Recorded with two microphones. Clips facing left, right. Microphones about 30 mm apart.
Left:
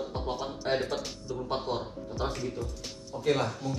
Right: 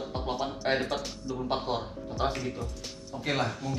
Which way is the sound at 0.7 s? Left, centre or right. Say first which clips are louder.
Right 1 dB; right.